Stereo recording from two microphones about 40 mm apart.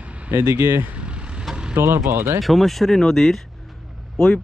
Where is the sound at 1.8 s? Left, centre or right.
Right.